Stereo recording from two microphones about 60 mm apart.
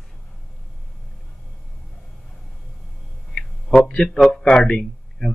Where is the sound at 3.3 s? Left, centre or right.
Centre.